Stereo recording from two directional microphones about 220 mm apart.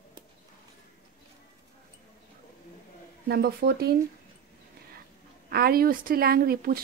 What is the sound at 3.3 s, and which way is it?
Speech, 45° right (ahead or behind).